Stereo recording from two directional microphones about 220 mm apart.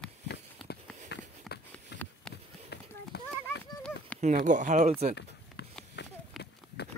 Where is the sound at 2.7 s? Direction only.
50° left (ahead or behind).